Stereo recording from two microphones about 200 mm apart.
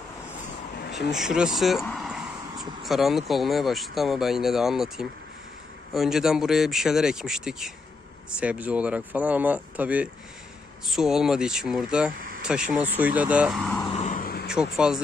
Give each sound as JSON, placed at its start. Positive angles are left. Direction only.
{"t": 0.9, "sound": "speech", "side_deg": 0}
{"t": 13.9, "sound": "a sound", "side_deg": 40}
{"t": 14.5, "sound": "speech", "side_deg": -5}